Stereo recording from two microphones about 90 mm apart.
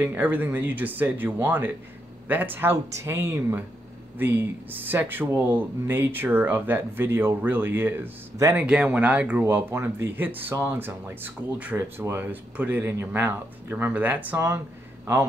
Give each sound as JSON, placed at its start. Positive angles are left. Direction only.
{"t": 0.0, "sound": "speech", "side_deg": -20}
{"t": 8.5, "sound": "speech", "side_deg": -10}
{"t": 9.4, "sound": "speech", "side_deg": -25}